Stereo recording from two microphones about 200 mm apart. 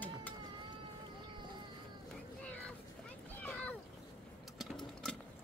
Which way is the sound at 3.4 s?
5° left (ahead or behind).